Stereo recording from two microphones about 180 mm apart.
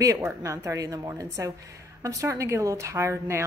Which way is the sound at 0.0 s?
15° right (ahead or behind).